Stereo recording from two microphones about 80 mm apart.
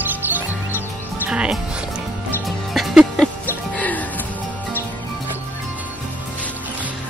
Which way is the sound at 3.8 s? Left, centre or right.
Centre.